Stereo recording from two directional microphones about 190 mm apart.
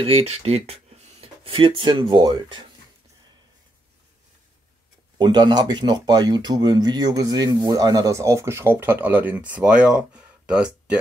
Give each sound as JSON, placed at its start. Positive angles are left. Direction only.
{"t": 0.0, "sound": "speech", "side_deg": -30}
{"t": 5.1, "sound": "speech", "side_deg": -25}